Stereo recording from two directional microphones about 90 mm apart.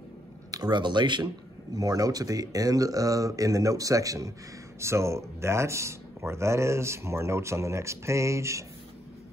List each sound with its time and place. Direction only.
0.5 s speech: 50° right (ahead or behind); by 8.6 s 35° right (ahead or behind)